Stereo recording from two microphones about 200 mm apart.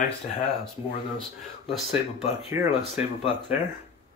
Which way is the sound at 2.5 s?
10° right (ahead or behind).